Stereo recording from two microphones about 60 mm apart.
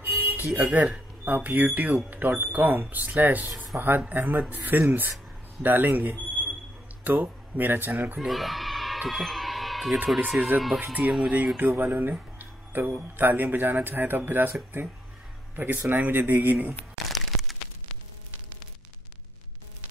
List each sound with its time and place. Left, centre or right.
0.0 s music: right
0.6 s speech: right
8.2 s a sound: centre
9.1 s music: centre
10.0 s speech: centre
10.8 s speech: right
11.7 s speech: right
17.1 s a sound: centre